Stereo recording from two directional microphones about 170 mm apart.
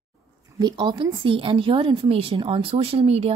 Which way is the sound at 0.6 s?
25° right (ahead or behind).